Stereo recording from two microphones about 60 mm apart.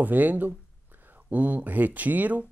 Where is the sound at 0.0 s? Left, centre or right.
Right.